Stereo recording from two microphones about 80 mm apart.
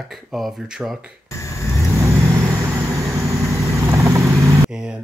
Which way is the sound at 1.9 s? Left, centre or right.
Right.